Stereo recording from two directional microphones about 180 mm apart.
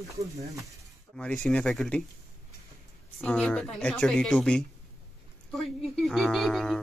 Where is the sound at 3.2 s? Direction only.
5° left (ahead or behind).